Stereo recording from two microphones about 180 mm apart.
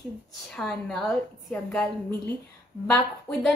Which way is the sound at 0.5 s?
5° left (ahead or behind).